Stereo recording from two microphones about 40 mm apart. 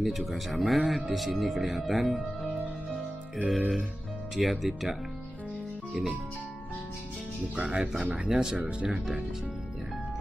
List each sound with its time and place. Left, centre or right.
0.0 s speech: centre
3.4 s speech: centre
7.5 s speech: centre